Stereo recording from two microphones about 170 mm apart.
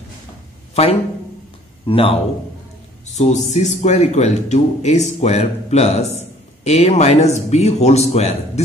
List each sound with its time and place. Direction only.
1.9 s speech: 35° left (ahead or behind)
3.2 s speech: 45° left (ahead or behind)